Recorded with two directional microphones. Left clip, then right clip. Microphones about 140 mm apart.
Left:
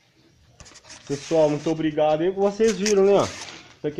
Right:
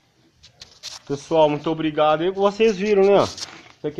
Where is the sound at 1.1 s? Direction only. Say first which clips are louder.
Right 2 dB; centre (ahead or behind).